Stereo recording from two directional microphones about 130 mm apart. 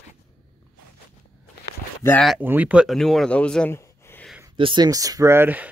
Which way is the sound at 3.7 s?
15° left (ahead or behind).